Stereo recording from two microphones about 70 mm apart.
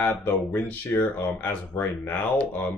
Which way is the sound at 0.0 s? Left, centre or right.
Left.